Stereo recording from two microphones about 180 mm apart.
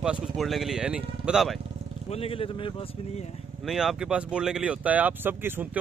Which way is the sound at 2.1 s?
30° left (ahead or behind).